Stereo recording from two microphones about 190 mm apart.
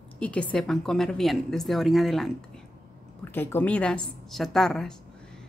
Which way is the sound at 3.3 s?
10° left (ahead or behind).